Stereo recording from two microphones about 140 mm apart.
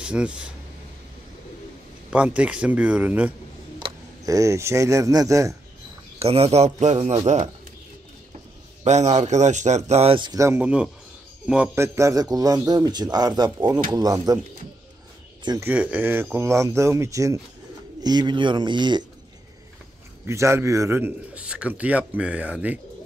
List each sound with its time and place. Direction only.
0.0 s speech: 5° right (ahead or behind)
2.1 s speech: 10° right (ahead or behind)
4.2 s a man's voice: 25° right (ahead or behind)
6.1 s a man's voice: 45° right (ahead or behind)
8.8 s speech: 55° right (ahead or behind)
10.1 s speech: 35° right (ahead or behind)
10.4 s a man's voice: 20° right (ahead or behind)
11.4 s speech: 5° right (ahead or behind)
11.7 s a man's voice: 20° right (ahead or behind)
15.6 s a man's voice: 10° right (ahead or behind); by 19.0 s 30° right (ahead or behind)
20.2 s a man's voice: 20° right (ahead or behind)
21.5 s speech: 10° right (ahead or behind)